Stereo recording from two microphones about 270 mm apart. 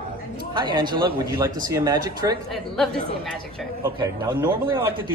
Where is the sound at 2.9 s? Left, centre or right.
Right.